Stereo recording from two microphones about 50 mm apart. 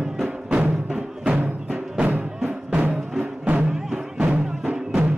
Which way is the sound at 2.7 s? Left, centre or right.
Right.